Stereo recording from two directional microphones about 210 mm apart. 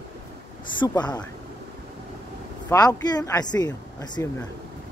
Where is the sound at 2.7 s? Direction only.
20° left (ahead or behind).